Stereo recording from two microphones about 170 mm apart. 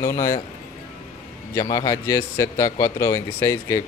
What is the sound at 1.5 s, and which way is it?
Speech, 20° left (ahead or behind).